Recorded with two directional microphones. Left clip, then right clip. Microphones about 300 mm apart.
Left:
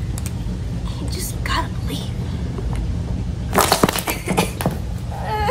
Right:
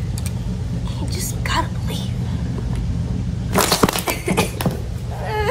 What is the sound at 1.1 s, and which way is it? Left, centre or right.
Whispering, centre.